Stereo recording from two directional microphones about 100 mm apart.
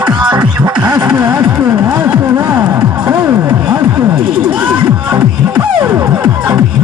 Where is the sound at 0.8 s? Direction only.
40° right (ahead or behind).